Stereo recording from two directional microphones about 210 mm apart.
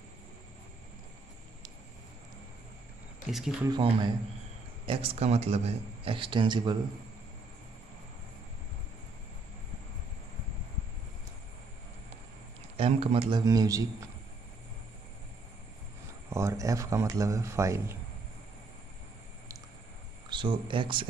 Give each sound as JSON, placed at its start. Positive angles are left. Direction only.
{"t": 3.3, "sound": "speech", "side_deg": 0}
{"t": 3.7, "sound": "speech", "side_deg": -20}
{"t": 12.7, "sound": "speech", "side_deg": -25}
{"t": 16.3, "sound": "a man's voice", "side_deg": -15}
{"t": 20.2, "sound": "speech", "side_deg": -25}